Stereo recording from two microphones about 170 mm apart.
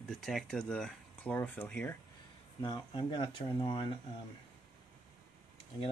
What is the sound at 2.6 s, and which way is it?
Speech, 30° left (ahead or behind).